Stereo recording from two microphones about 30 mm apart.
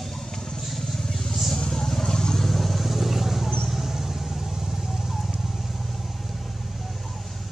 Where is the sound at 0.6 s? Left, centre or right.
Centre.